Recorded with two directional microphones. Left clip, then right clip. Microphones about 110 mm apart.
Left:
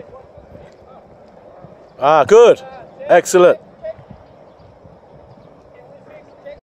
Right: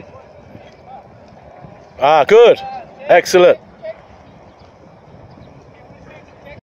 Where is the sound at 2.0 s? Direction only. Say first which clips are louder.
Even; centre (ahead or behind).